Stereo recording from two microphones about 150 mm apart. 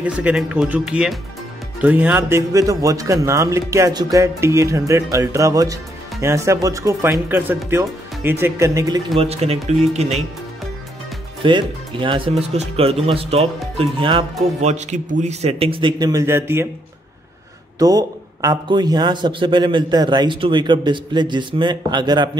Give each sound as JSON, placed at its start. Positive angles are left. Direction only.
{"t": 0.0, "sound": "a man's voice", "side_deg": -10}
{"t": 9.2, "sound": "speech", "side_deg": -45}
{"t": 11.4, "sound": "a man's voice", "side_deg": -35}
{"t": 14.6, "sound": "speech", "side_deg": -50}
{"t": 16.0, "sound": "speech", "side_deg": -20}
{"t": 17.7, "sound": "a man's voice", "side_deg": -25}